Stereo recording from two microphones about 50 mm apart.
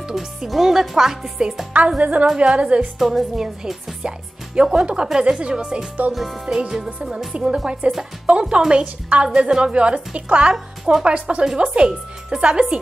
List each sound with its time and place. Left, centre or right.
0.0 s speech: centre
1.9 s a woman's voice: right
3.0 s a woman's voice: centre
6.1 s music: centre
6.9 s a woman's voice: right